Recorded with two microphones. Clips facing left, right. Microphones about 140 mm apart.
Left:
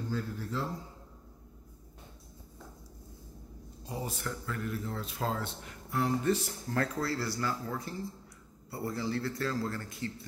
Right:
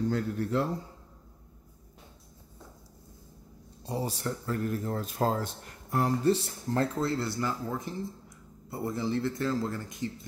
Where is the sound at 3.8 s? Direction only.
35° right (ahead or behind).